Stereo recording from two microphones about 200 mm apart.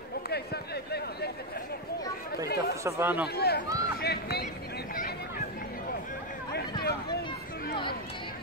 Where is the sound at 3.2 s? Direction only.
55° left (ahead or behind).